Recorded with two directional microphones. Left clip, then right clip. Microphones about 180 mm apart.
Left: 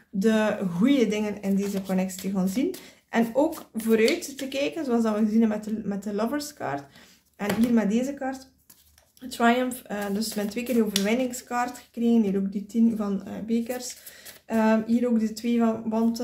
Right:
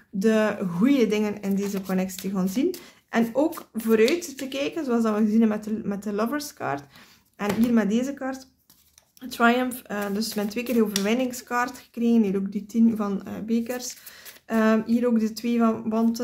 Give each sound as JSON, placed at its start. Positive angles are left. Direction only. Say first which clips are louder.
{"t": 0.2, "sound": "speech", "louder": "right 1 dB", "side_deg": -20}